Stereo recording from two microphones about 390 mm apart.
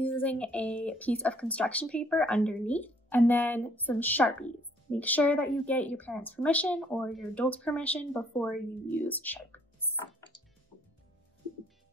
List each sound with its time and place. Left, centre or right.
0.0 s speech: centre